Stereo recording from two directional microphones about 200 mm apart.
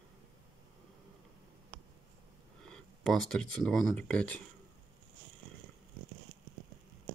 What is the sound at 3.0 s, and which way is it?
Speech, centre (ahead or behind).